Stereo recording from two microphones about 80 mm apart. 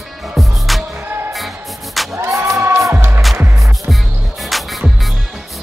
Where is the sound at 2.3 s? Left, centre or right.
Right.